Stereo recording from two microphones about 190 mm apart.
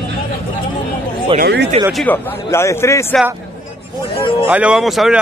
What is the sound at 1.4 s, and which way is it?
Speech, 60° right (ahead or behind).